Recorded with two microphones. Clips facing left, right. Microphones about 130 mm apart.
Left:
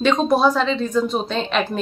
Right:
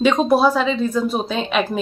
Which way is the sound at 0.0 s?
10° right (ahead or behind).